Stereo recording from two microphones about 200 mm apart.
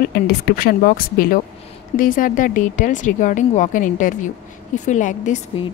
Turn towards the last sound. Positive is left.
turn(degrees=35)  # may be behind; listen again after turning